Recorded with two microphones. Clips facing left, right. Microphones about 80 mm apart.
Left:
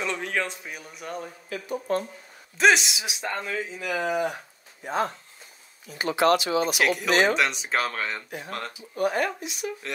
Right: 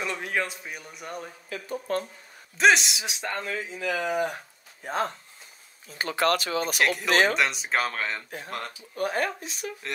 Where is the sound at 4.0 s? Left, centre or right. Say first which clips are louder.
Left 2 dB; left.